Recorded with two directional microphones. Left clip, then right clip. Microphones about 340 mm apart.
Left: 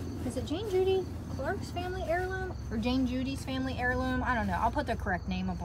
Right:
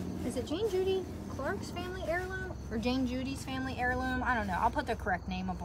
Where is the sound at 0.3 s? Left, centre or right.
Centre.